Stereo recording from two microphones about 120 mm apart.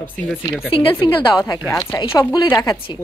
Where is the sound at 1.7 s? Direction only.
25° left (ahead or behind).